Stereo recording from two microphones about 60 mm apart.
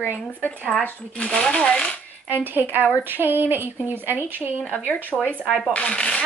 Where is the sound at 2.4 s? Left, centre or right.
Right.